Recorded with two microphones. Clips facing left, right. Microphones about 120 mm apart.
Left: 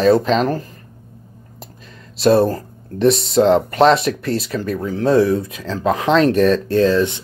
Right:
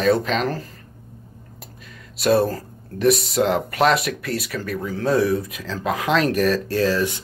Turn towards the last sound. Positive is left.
turn(degrees=25)  # may be behind; listen again after turning